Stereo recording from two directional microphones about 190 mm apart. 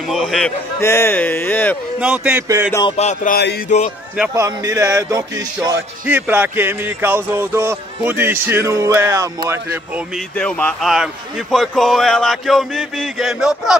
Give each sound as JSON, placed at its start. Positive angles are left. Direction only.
{"t": 0.1, "sound": "a man's voice", "side_deg": 0}
{"t": 0.7, "sound": "a man's voice", "side_deg": 15}
{"t": 2.0, "sound": "music", "side_deg": -5}
{"t": 3.0, "sound": "a sound", "side_deg": 35}
{"t": 4.3, "sound": "music", "side_deg": -15}
{"t": 10.1, "sound": "a man's voice", "side_deg": 5}